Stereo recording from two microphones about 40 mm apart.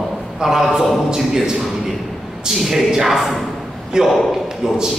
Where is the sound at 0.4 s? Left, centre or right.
Centre.